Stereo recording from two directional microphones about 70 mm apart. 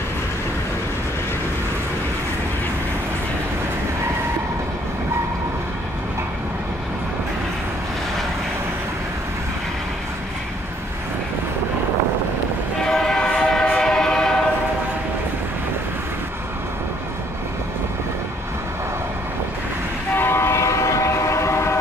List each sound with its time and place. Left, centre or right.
12.8 s train: centre
20.2 s train: left